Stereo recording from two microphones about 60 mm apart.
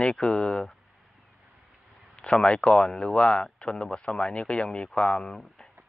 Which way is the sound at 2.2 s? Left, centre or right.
Centre.